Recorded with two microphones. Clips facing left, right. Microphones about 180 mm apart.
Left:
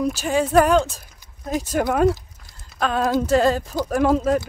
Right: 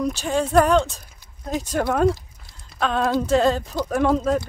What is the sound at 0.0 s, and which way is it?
Speech, 5° left (ahead or behind).